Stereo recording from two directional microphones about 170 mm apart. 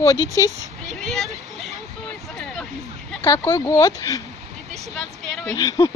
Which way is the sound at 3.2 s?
15° left (ahead or behind).